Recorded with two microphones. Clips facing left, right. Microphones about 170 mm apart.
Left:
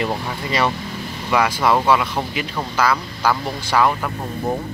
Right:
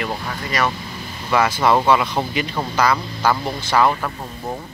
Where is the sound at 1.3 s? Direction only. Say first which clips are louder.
Right 1 dB; 5° left (ahead or behind).